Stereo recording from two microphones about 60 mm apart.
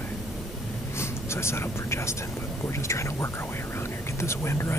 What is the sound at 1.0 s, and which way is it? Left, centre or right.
Speech, left.